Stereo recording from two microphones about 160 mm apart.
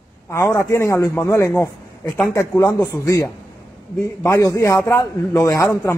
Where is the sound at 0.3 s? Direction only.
20° left (ahead or behind).